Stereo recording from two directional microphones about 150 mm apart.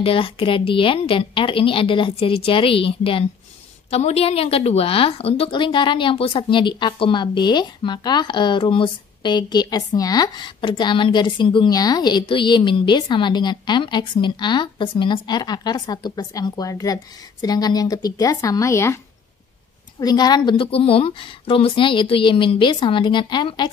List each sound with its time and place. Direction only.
0.0 s a woman's voice: 40° left (ahead or behind); by 18.9 s 20° left (ahead or behind)
20.0 s a woman's voice: 25° left (ahead or behind)